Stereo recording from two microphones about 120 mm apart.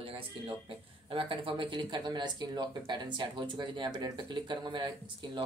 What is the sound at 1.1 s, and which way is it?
Speech, 45° right (ahead or behind).